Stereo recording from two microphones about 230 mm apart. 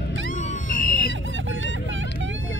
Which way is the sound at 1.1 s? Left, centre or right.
Right.